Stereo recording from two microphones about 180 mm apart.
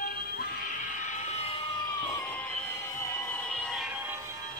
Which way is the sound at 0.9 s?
45° left (ahead or behind).